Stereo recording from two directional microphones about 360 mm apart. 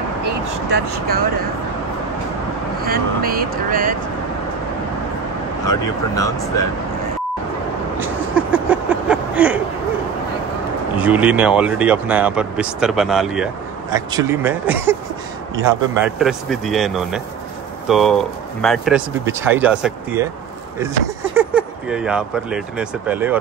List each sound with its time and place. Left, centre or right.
0.7 s speech: right
2.8 s speech: right
5.7 s speech: centre
8.0 s a sound: centre
11.0 s speech: centre
21.4 s speech: centre